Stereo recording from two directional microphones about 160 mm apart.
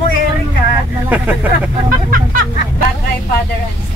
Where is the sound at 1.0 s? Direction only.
10° right (ahead or behind).